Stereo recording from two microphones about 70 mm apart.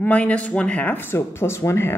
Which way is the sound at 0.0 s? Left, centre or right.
Left.